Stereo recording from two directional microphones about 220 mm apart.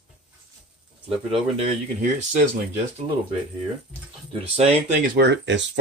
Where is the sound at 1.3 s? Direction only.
30° right (ahead or behind).